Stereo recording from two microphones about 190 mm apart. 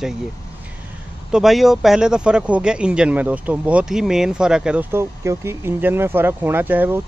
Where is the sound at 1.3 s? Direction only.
Centre (ahead or behind).